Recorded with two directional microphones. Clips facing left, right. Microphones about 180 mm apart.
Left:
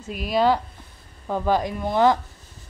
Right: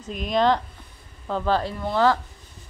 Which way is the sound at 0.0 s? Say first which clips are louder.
Left 1 dB; 5° left (ahead or behind).